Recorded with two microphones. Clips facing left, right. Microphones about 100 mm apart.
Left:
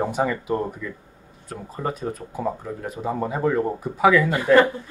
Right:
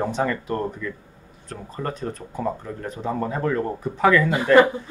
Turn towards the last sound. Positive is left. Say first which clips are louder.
# right 1 dB
turn(degrees=-15)  # may be behind; listen again after turning